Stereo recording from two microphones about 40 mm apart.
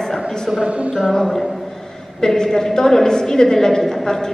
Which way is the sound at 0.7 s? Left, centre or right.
Right.